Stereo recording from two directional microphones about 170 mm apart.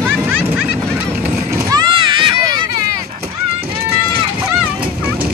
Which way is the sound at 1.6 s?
25° right (ahead or behind).